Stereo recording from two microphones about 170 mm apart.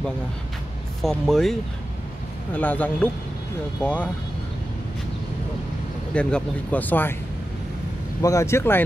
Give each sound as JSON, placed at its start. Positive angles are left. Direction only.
{"t": 1.0, "sound": "speech", "side_deg": 0}
{"t": 6.1, "sound": "speech", "side_deg": 5}
{"t": 8.2, "sound": "speech", "side_deg": 20}